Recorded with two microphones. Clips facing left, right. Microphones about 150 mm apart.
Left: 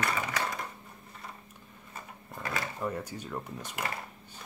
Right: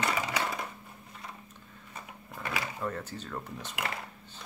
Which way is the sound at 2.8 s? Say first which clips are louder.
Left 1 dB; 10° left (ahead or behind).